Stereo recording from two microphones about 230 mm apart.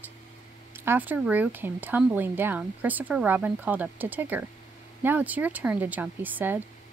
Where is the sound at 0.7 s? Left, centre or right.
Centre.